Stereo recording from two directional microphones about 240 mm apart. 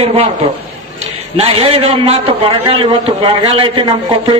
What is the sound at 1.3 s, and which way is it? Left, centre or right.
A man's voice, right.